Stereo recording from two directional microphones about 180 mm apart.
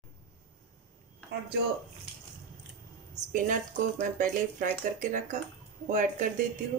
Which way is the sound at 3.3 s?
45° right (ahead or behind).